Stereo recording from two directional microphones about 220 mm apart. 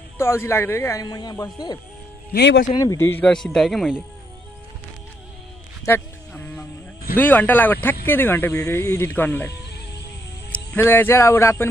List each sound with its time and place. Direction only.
0.2 s speech: 10° left (ahead or behind)
2.3 s speech: 50° left (ahead or behind)
2.7 s speech: 15° left (ahead or behind); by 4.0 s centre (ahead or behind)
5.9 s music: 10° left (ahead or behind)
7.2 s speech: 10° left (ahead or behind)
10.5 s speech: 10° left (ahead or behind)